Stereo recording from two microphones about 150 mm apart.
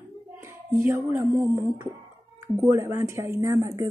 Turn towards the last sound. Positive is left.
turn(degrees=-20)  # may be behind; listen again after turning